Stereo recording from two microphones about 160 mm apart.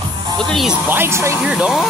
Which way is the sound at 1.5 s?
5° right (ahead or behind).